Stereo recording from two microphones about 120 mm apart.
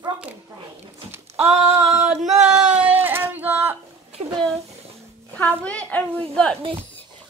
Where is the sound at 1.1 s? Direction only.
15° right (ahead or behind).